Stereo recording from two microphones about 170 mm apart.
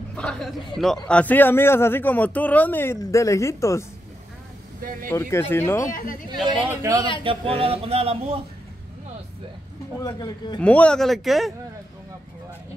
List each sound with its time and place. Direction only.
0.1 s a man's voice: 5° left (ahead or behind)
5.1 s a man's voice: 15° left (ahead or behind)
5.9 s speech: 55° left (ahead or behind)
6.7 s speech: 20° right (ahead or behind)
7.2 s a sound: 35° right (ahead or behind)
9.9 s speech: 20° left (ahead or behind)
10.6 s speech: 5° left (ahead or behind)